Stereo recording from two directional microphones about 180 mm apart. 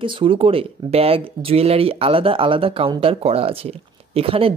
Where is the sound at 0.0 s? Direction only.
30° right (ahead or behind).